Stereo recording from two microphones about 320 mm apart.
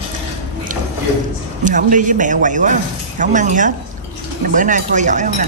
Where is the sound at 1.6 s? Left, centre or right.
Right.